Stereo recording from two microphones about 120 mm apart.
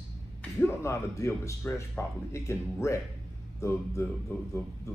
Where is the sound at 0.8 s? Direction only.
25° left (ahead or behind).